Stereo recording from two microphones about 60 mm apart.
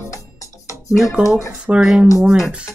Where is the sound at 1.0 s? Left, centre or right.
Centre.